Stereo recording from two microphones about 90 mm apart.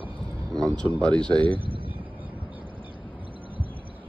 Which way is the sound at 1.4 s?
75° right (ahead or behind).